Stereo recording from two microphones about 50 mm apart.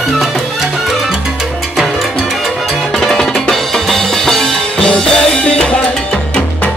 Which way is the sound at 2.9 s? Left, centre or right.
Centre.